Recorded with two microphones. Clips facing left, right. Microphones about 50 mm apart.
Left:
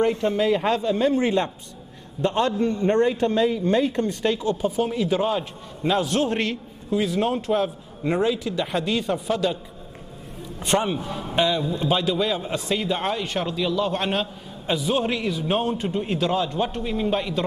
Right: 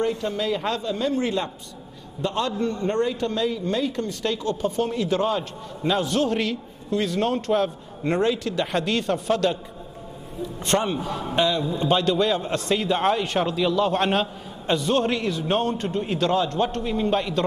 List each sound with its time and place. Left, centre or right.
0.0 s a man's voice: left; by 9.6 s centre
10.6 s a man's voice: centre